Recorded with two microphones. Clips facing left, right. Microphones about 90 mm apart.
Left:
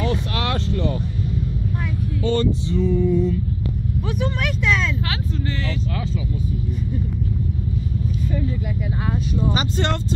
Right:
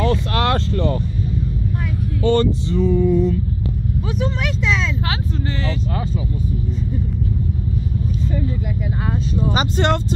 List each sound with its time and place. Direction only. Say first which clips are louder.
0.0 s vehicle: right 5 dB; 50° right (ahead or behind)
2.2 s vehicle: right 4 dB; 60° right (ahead or behind)
9.5 s speech: right 6 dB; 75° right (ahead or behind)